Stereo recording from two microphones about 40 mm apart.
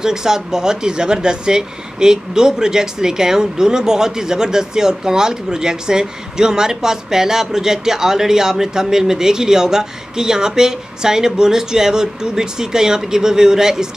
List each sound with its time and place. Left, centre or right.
0.0 s speech: centre